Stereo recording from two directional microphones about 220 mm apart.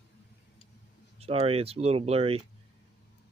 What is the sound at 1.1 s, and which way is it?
Speech, 25° right (ahead or behind).